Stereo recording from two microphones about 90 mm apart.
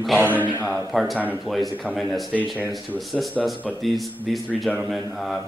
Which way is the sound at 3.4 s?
Centre (ahead or behind).